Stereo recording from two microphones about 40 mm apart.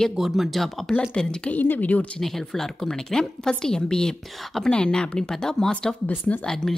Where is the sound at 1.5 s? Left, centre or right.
Left.